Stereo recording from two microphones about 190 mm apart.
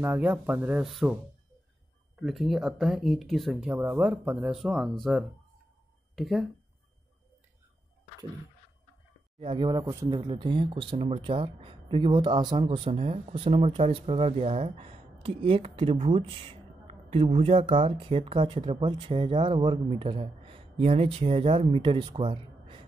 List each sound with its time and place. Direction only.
0.0 s speech: 10° right (ahead or behind)
2.1 s speech: centre (ahead or behind)
3.7 s speech: 10° right (ahead or behind)
9.4 s speech: 30° right (ahead or behind)